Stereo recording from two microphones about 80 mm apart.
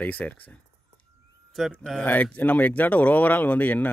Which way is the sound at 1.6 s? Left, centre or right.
Centre.